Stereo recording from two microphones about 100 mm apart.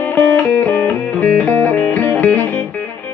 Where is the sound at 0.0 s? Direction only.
20° left (ahead or behind).